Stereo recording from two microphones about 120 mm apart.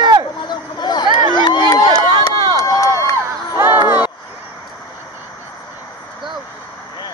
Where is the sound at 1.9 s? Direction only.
35° right (ahead or behind).